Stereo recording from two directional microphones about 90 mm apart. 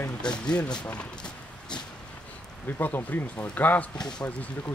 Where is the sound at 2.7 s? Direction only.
20° left (ahead or behind).